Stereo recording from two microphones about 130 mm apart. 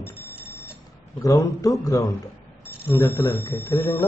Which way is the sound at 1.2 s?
25° left (ahead or behind).